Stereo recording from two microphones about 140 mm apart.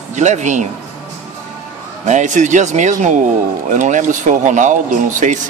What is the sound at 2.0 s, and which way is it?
Speech, 60° right (ahead or behind).